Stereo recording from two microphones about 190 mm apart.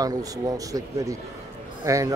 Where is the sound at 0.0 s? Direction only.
20° right (ahead or behind).